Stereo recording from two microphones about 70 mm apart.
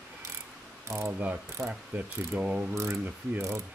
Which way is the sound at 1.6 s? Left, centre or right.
Right.